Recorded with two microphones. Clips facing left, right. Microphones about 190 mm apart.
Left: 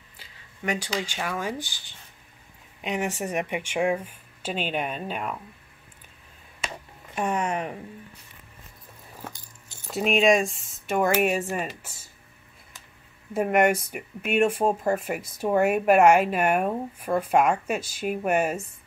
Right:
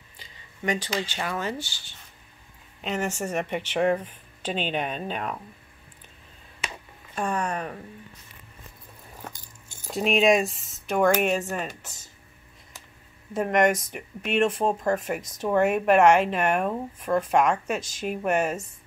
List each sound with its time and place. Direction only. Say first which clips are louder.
0.2 s a sound: right 2 dB; 5° left (ahead or behind)
1.0 s speech: even; 10° left (ahead or behind)
7.2 s speech: left 1 dB; 20° left (ahead or behind)
9.8 s speech: even; centre (ahead or behind)
13.3 s speech: left 1 dB; 10° left (ahead or behind)